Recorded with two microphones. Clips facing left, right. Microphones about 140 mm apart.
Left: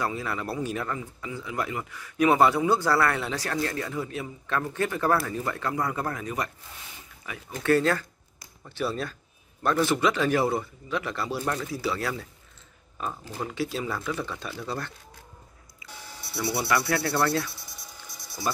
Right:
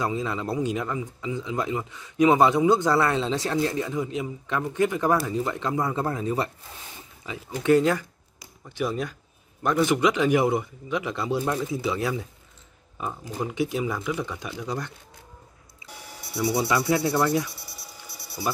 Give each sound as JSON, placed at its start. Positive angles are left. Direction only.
{"t": 0.0, "sound": "speech", "side_deg": -20}
{"t": 7.2, "sound": "a man's voice", "side_deg": -15}
{"t": 16.1, "sound": "a sound", "side_deg": -15}